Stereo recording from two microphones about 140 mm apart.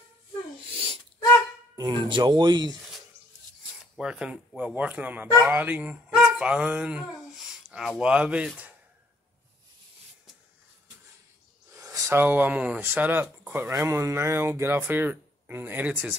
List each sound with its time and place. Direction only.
0.7 s sneeze: 40° right (ahead or behind)
1.8 s speech: 30° right (ahead or behind)
3.8 s speech: 5° right (ahead or behind)
11.7 s a sound: 20° right (ahead or behind)
12.1 s speech: 15° right (ahead or behind)